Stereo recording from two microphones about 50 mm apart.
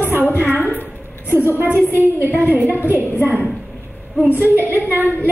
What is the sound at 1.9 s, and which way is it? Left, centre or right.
A woman's voice, right.